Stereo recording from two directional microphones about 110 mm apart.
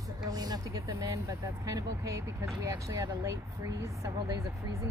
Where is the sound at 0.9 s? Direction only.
30° right (ahead or behind).